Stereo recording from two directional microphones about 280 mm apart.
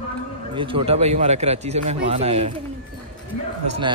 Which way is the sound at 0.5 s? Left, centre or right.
Centre.